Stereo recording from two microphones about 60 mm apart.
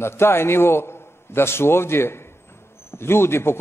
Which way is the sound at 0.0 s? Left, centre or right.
Left.